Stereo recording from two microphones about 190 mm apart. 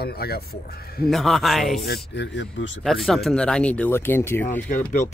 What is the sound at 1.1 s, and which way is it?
Speech, centre (ahead or behind).